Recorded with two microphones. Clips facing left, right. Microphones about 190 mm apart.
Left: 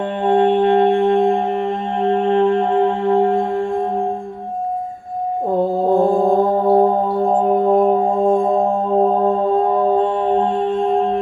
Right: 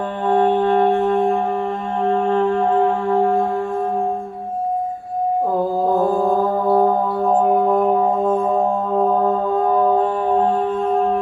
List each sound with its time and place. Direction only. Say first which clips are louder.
0.3 s music: left 2 dB; 25° left (ahead or behind)
5.9 s mantra: left 4 dB; 20° left (ahead or behind)
6.7 s music: even; 30° left (ahead or behind)
7.6 s music: left 2 dB; 20° left (ahead or behind)
9.0 s mantra: even; 25° left (ahead or behind)